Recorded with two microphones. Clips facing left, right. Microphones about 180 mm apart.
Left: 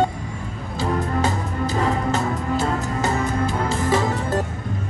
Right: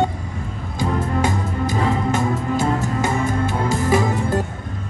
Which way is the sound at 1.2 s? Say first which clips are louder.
Right 2 dB; 15° right (ahead or behind).